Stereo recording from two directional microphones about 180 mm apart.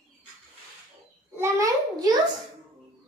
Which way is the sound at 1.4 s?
20° right (ahead or behind).